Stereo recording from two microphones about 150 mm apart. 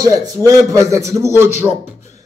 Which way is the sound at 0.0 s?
25° right (ahead or behind).